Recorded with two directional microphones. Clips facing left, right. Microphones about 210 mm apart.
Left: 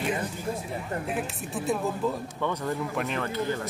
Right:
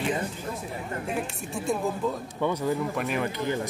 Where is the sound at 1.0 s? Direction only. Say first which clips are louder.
Even; centre (ahead or behind).